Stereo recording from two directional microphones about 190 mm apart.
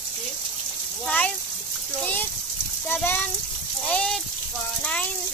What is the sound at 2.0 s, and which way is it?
Speech, 10° left (ahead or behind).